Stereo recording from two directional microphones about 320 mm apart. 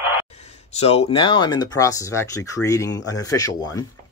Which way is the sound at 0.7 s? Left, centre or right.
Centre.